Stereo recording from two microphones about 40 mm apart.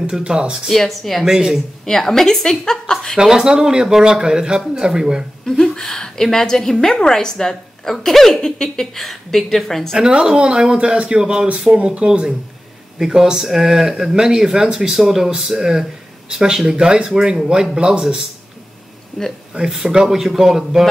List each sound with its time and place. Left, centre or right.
0.2 s speech: right
0.7 s a woman's voice: centre
1.2 s speech: centre
1.9 s a woman's voice: centre
3.2 s speech: centre
5.4 s a woman's voice: centre
9.9 s speech: right
11.7 s speech: right
13.0 s speech: centre
19.2 s a woman's voice: centre
19.5 s speech: centre